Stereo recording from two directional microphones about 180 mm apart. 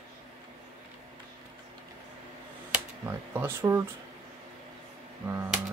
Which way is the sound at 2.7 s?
10° right (ahead or behind).